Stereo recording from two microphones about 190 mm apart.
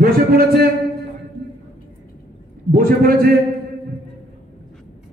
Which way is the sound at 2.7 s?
50° right (ahead or behind).